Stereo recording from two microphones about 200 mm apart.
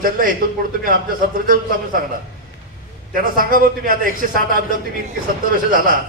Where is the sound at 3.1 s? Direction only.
45° right (ahead or behind).